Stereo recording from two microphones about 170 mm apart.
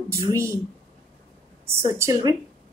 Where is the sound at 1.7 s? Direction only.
15° right (ahead or behind).